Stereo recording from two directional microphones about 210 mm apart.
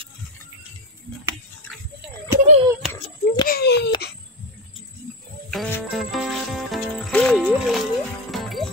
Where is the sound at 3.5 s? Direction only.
50° left (ahead or behind).